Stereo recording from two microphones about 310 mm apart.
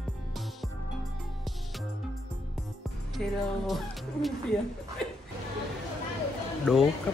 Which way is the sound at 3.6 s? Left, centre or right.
Centre.